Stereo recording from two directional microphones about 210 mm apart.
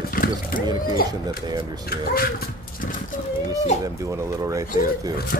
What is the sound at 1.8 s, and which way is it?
Speech, 45° left (ahead or behind).